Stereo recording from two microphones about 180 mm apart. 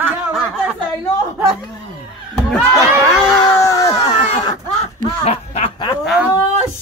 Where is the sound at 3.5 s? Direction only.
20° left (ahead or behind).